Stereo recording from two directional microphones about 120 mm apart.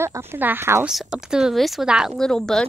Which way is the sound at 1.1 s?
5° right (ahead or behind).